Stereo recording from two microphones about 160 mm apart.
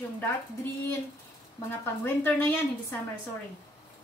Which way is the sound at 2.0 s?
15° left (ahead or behind).